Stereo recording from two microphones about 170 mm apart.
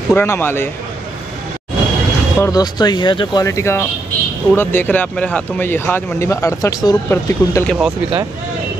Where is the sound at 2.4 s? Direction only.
20° left (ahead or behind).